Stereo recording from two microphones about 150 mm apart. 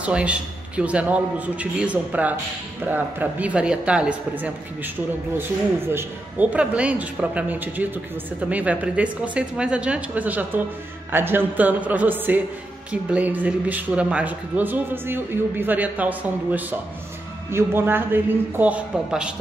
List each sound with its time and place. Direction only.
0.0 s speech: 10° right (ahead or behind)